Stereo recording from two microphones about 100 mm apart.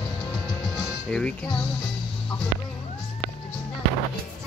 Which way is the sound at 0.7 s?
5° left (ahead or behind).